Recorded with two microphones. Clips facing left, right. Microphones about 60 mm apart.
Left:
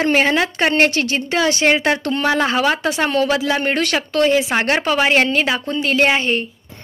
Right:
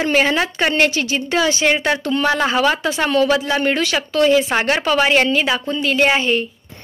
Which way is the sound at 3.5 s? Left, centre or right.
Left.